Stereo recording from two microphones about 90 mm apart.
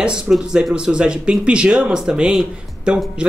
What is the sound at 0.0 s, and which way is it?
Speech, 10° right (ahead or behind).